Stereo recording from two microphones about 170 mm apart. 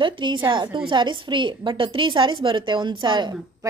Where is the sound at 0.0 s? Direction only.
30° right (ahead or behind).